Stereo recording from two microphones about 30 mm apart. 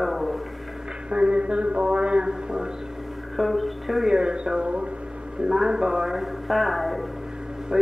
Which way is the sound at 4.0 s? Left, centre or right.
Right.